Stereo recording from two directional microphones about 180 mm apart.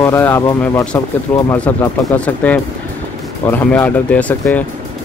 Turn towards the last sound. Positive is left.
turn(degrees=5)  # may be behind; listen again after turning